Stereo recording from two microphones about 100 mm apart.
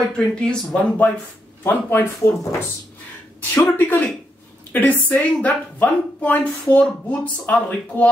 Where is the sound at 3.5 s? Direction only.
20° left (ahead or behind).